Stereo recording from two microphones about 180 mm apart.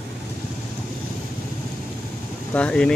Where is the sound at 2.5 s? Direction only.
5° left (ahead or behind).